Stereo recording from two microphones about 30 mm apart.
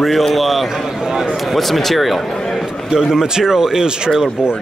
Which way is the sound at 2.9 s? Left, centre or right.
Right.